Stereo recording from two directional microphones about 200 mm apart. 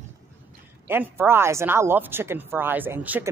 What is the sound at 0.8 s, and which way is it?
Speech, 10° right (ahead or behind).